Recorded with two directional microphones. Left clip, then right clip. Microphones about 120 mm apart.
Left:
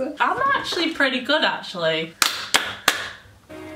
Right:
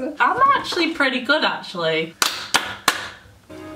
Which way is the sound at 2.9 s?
Centre (ahead or behind).